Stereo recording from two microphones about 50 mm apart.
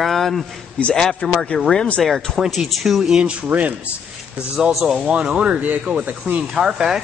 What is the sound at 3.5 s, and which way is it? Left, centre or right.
Speech, centre.